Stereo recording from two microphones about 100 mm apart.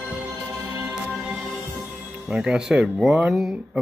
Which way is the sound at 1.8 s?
20° right (ahead or behind).